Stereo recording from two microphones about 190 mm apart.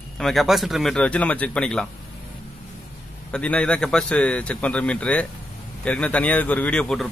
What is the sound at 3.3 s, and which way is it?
Speech, 5° left (ahead or behind).